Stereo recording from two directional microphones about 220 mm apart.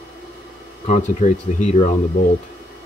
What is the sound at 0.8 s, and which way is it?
Speech, 35° left (ahead or behind).